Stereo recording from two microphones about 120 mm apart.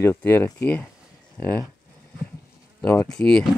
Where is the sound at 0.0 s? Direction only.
20° left (ahead or behind).